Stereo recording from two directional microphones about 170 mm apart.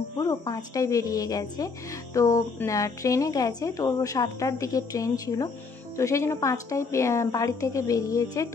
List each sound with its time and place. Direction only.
0.2 s speech: 20° left (ahead or behind)